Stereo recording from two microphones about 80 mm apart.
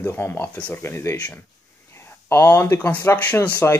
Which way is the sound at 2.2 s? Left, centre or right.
Left.